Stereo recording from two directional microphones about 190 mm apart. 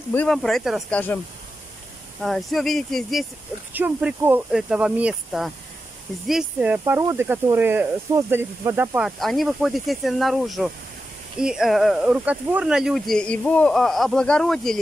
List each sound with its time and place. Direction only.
0.1 s speech: 5° left (ahead or behind)
2.2 s speech: centre (ahead or behind)
6.8 s speech: 15° right (ahead or behind); by 14.8 s centre (ahead or behind)